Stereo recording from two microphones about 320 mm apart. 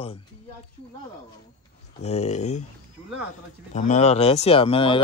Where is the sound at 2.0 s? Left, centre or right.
Left.